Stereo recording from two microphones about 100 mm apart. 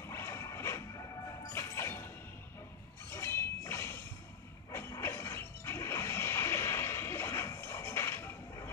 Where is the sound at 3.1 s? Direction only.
30° left (ahead or behind).